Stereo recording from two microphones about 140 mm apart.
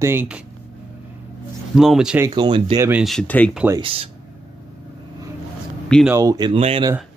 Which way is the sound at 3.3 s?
10° left (ahead or behind).